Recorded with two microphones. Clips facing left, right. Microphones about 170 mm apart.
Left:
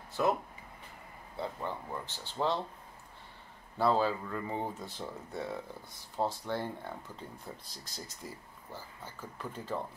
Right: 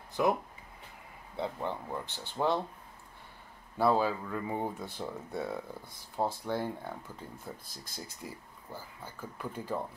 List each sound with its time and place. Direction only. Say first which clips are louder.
0.1 s speech: right 1 dB; 15° right (ahead or behind)
3.7 s speech: right 1 dB; 10° right (ahead or behind)
7.6 s speech: right 1 dB; 50° right (ahead or behind)
8.2 s speech: right 1 dB; 15° right (ahead or behind)